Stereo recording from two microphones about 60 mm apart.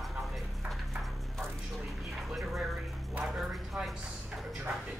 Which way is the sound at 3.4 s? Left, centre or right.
Centre.